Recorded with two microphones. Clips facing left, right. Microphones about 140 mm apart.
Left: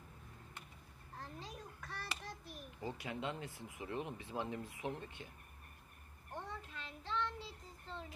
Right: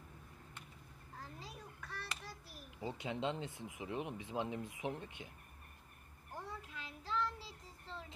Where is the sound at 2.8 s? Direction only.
20° right (ahead or behind).